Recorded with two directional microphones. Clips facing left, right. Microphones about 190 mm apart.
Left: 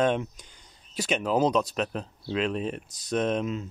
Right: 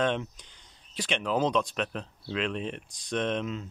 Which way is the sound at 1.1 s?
40° left (ahead or behind).